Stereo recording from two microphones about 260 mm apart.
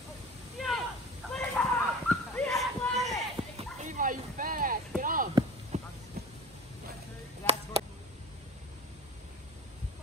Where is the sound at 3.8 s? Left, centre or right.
Right.